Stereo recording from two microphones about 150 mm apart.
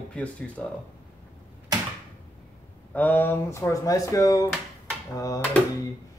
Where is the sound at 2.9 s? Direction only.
10° left (ahead or behind).